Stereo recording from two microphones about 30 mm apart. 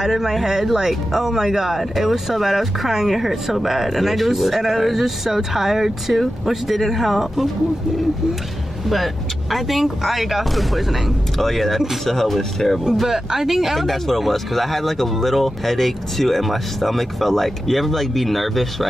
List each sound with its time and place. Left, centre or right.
0.0 s speech: centre
8.8 s speech: centre
11.3 s speech: centre
13.0 s speech: centre
13.7 s speech: centre